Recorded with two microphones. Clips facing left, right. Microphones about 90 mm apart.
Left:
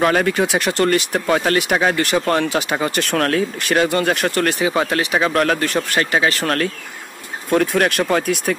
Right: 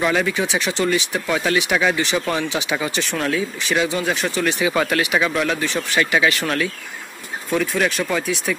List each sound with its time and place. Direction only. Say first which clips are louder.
0.0 s speech: left 3 dB; 50° left (ahead or behind)
4.6 s speech: left 1 dB; 30° left (ahead or behind)
5.3 s speech: left 4 dB; 55° left (ahead or behind)
6.1 s speech: left 2 dB; 40° left (ahead or behind); by 8.5 s 55° left (ahead or behind)